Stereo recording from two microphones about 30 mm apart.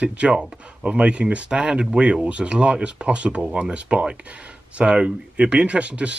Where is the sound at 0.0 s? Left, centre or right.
Right.